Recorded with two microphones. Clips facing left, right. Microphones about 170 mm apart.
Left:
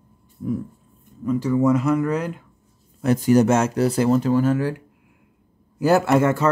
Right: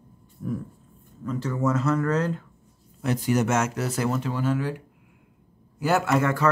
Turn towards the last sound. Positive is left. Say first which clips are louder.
# left 5 dB
turn(degrees=25)  # may be behind; listen again after turning